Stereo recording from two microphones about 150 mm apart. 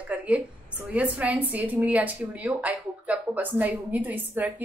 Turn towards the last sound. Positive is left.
turn(degrees=-10)  # may be behind; listen again after turning